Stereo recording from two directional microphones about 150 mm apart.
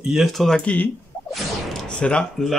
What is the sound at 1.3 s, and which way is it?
Whoosh, centre (ahead or behind).